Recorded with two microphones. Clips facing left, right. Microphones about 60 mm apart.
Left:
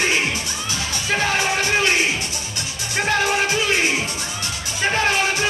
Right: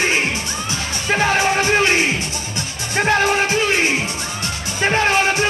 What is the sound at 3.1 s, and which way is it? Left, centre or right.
Music, right.